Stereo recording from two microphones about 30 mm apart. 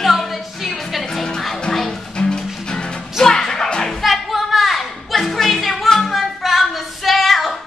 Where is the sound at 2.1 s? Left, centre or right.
Left.